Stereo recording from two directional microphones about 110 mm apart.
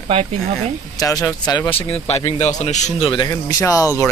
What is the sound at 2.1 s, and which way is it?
A man's voice, 70° left (ahead or behind).